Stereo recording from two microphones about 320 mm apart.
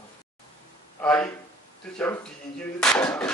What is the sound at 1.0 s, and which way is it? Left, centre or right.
A man's voice, centre.